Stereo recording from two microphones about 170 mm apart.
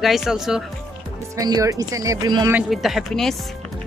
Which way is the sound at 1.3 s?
20° right (ahead or behind).